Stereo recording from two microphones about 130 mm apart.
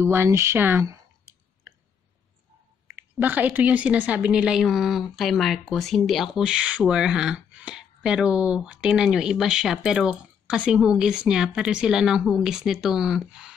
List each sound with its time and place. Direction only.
0.0 s speech: 20° right (ahead or behind)
3.0 s a woman's voice: 15° right (ahead or behind)